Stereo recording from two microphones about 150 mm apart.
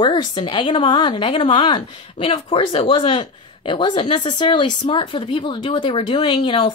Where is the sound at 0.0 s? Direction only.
30° left (ahead or behind).